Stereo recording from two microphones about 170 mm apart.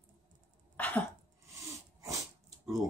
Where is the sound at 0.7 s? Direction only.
10° left (ahead or behind).